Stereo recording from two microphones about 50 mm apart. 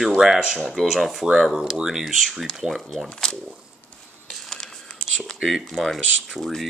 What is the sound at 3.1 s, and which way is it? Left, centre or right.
Speech, centre.